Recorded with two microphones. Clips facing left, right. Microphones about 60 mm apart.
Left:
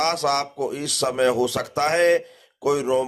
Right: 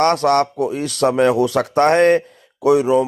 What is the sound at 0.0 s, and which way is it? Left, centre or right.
Speech, right.